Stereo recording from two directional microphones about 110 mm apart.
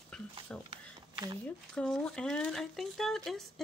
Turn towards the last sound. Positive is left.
turn(degrees=0)  # may be behind; listen again after turning